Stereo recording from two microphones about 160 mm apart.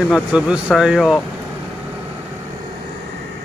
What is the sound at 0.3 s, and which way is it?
Speech, 5° right (ahead or behind).